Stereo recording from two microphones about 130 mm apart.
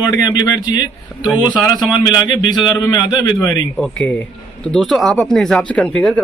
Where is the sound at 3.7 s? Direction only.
10° left (ahead or behind).